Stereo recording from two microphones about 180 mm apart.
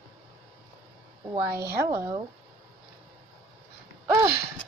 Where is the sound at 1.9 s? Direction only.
20° right (ahead or behind).